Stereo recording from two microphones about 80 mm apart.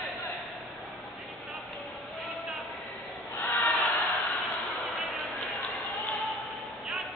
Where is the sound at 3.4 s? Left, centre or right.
Centre.